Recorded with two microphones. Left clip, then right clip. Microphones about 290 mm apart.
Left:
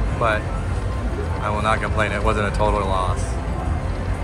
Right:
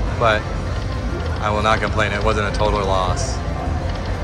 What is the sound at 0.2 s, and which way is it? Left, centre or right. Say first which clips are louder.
Speech: right 4 dB; centre.